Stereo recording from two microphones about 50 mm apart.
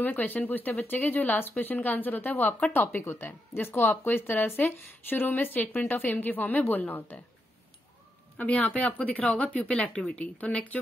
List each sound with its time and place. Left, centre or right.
0.0 s a woman's voice: left
8.4 s a woman's voice: left